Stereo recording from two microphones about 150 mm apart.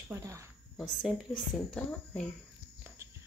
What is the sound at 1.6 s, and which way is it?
Speech, 5° left (ahead or behind).